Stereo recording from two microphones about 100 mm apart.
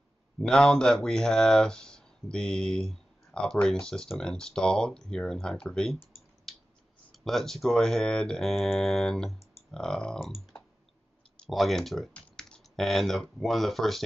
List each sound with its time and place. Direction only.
0.4 s speech: 5° left (ahead or behind)
6.5 s a sound: 5° left (ahead or behind)
7.1 s speech: centre (ahead or behind)
11.3 s speech: centre (ahead or behind)